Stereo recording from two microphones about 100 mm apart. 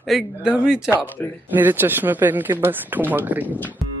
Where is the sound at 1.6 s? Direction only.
20° right (ahead or behind).